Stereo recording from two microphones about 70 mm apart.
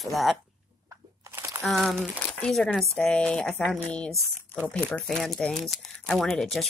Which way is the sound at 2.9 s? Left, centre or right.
Centre.